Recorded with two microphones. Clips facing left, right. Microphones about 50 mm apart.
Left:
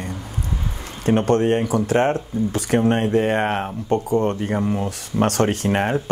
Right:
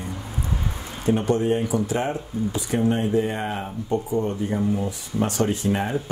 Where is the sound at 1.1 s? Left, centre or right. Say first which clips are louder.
Left 4 dB; left.